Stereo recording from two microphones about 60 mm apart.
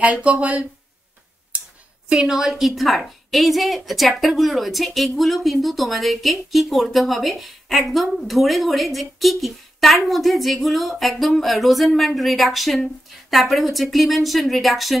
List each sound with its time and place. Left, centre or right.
0.0 s speech: right
2.0 s a woman's voice: centre